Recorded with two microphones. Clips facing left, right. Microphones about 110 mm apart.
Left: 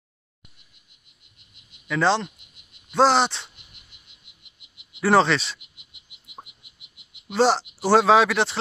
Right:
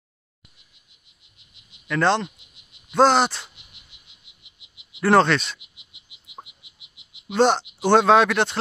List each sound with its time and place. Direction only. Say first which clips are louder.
1.9 s speech: right 1 dB; centre (ahead or behind)
4.2 s frog: even; 55° left (ahead or behind)
5.0 s speech: right 1 dB; centre (ahead or behind)
6.4 s frog: even; 50° left (ahead or behind)
7.2 s speech: right 1 dB; centre (ahead or behind)